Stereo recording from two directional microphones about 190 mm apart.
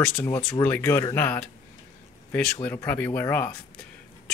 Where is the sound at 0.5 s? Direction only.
10° left (ahead or behind).